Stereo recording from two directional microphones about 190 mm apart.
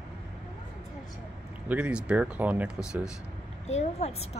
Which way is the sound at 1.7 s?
5° right (ahead or behind).